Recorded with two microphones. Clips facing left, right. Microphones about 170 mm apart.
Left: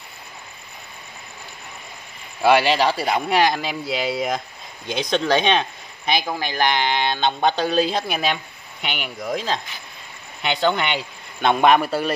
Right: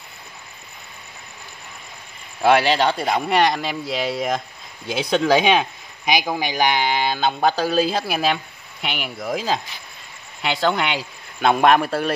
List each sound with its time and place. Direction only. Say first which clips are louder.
2.4 s speech: even; centre (ahead or behind)